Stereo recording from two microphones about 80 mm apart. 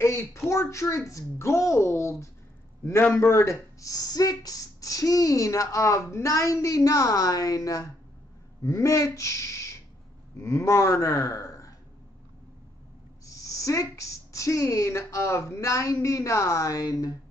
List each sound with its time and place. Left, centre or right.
0.0 s speech: left
13.2 s speech: left